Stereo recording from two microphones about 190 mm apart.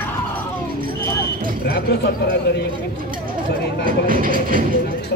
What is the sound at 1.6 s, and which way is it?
A man's voice, 60° left (ahead or behind).